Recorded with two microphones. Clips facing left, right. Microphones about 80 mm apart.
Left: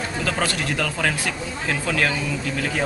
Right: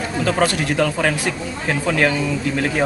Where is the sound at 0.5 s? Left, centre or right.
Right.